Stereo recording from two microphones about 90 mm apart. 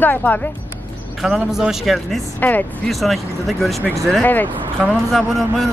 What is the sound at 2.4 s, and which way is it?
Speech, 20° left (ahead or behind).